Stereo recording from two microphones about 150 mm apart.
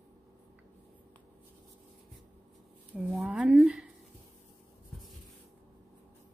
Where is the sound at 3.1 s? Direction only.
5° right (ahead or behind).